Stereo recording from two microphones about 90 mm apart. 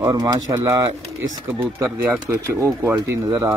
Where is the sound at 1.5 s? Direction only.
25° right (ahead or behind).